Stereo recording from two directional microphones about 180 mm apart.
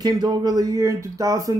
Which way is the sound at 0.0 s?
20° right (ahead or behind).